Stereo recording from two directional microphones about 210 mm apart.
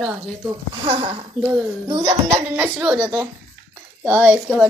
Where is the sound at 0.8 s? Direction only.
25° right (ahead or behind).